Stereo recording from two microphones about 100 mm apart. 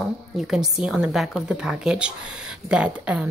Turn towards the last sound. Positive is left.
turn(degrees=-10)  # may be behind; listen again after turning